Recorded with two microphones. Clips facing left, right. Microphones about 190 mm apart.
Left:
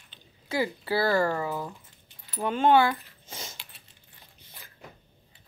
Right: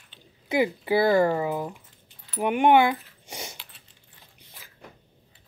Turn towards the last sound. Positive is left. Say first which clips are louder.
# right 4 dB
turn(degrees=-15)  # may be behind; listen again after turning